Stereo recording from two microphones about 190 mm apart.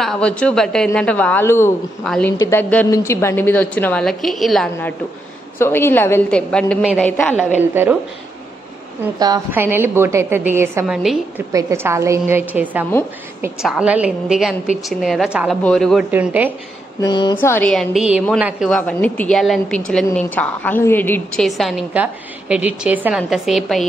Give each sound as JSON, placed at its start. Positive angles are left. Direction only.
{"t": 0.0, "sound": "a woman's voice", "side_deg": 5}
{"t": 5.6, "sound": "a woman's voice", "side_deg": 10}
{"t": 7.7, "sound": "a woman's voice", "side_deg": -10}
{"t": 9.5, "sound": "a woman's voice", "side_deg": -10}
{"t": 10.9, "sound": "a woman's voice", "side_deg": 0}
{"t": 11.5, "sound": "a woman's voice", "side_deg": -15}
{"t": 17.0, "sound": "speech", "side_deg": 25}
{"t": 17.4, "sound": "a woman's voice", "side_deg": 10}
{"t": 18.8, "sound": "a woman's voice", "side_deg": 10}
{"t": 21.5, "sound": "a woman's voice", "side_deg": 0}